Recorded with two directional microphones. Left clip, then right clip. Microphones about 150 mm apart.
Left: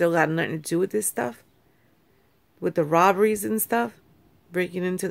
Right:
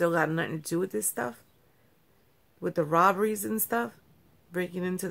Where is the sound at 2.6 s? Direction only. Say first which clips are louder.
Left 4 dB; 20° left (ahead or behind).